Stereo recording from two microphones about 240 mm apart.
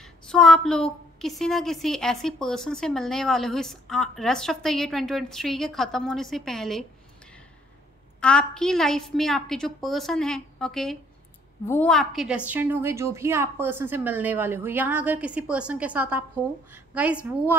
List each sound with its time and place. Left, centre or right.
0.0 s a woman's voice: centre
8.2 s a woman's voice: centre